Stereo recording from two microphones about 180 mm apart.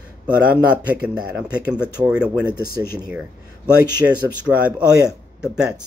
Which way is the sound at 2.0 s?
5° right (ahead or behind).